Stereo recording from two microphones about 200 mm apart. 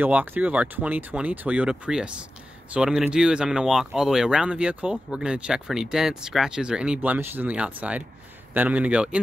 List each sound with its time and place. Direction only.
0.0 s speech: 10° right (ahead or behind)